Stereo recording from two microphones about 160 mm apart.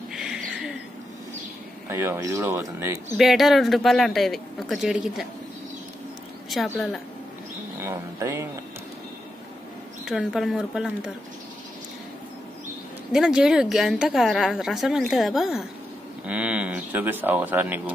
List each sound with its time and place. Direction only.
0.1 s a sound: 5° right (ahead or behind)
1.9 s speech: 15° right (ahead or behind)
3.2 s a woman's voice: centre (ahead or behind)
6.5 s a woman's voice: centre (ahead or behind)
7.8 s speech: 15° right (ahead or behind)
10.0 s a woman's voice: 5° right (ahead or behind)
13.1 s a woman's voice: 5° right (ahead or behind)